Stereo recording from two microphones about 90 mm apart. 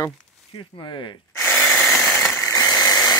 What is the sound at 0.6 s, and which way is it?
Speech, 65° left (ahead or behind).